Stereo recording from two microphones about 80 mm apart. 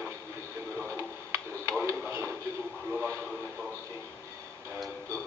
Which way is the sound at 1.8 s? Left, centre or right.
Right.